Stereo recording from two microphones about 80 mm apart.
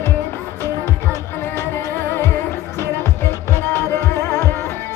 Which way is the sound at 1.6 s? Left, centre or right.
Left.